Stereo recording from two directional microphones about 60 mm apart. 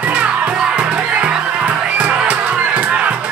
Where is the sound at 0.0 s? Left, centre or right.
Right.